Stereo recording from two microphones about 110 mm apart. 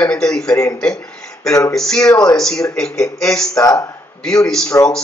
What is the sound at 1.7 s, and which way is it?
Speech, 5° left (ahead or behind).